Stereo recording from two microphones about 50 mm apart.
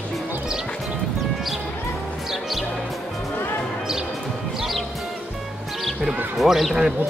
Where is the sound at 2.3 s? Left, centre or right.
Centre.